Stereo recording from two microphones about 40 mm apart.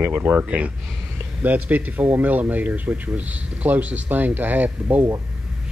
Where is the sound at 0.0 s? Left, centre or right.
Right.